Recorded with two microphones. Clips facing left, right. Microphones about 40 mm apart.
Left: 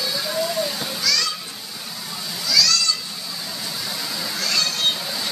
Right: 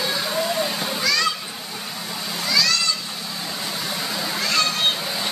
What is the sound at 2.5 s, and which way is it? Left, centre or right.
Children playing, right.